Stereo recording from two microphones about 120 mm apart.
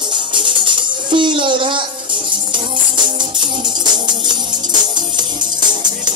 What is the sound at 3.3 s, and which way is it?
Music, 40° right (ahead or behind).